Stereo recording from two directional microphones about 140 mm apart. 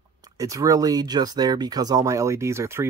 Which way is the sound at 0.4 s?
25° right (ahead or behind).